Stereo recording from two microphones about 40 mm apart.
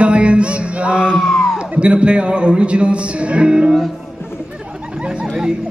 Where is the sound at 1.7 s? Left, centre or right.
Right.